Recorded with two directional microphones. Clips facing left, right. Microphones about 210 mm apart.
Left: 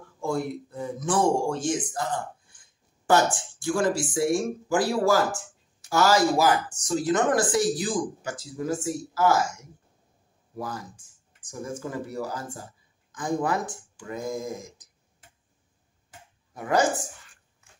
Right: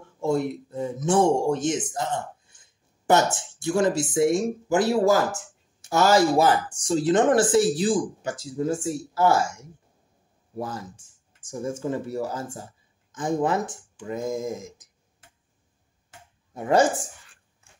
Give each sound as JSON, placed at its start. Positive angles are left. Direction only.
{"t": 0.2, "sound": "speech", "side_deg": -25}
{"t": 10.5, "sound": "speech", "side_deg": -25}
{"t": 16.5, "sound": "speech", "side_deg": -25}